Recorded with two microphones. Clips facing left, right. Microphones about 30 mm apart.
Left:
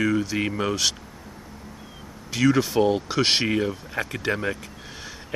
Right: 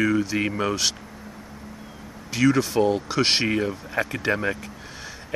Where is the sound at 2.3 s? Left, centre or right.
Centre.